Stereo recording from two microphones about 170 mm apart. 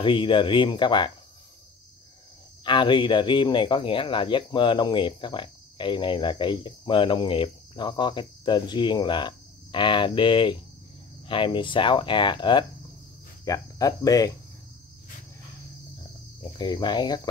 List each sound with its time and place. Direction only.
0.0 s speech: 30° left (ahead or behind)
2.6 s speech: 30° left (ahead or behind)
16.5 s speech: 25° left (ahead or behind)